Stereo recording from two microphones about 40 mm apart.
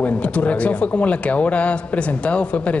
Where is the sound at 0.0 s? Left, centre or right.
Left.